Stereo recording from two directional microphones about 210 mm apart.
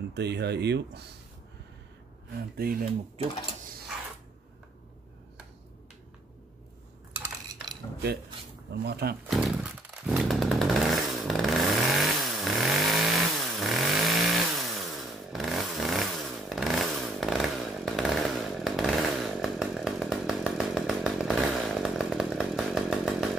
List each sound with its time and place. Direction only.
0.1 s speech: 55° right (ahead or behind)
2.5 s speech: 45° right (ahead or behind)
8.8 s speech: 50° right (ahead or behind)
9.3 s chainsaw: centre (ahead or behind)